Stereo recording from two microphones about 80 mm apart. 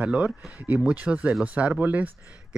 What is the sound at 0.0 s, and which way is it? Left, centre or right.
Speech, centre.